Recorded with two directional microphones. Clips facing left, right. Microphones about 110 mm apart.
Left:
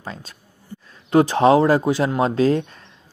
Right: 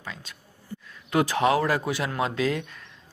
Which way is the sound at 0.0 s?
40° left (ahead or behind).